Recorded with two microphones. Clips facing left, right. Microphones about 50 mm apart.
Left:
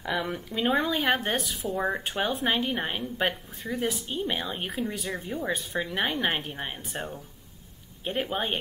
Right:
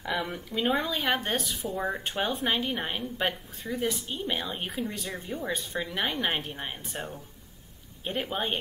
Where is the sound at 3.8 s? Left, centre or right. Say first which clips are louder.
Left 1 dB; centre.